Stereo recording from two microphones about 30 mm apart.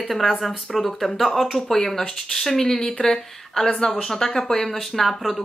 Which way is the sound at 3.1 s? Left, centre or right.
Centre.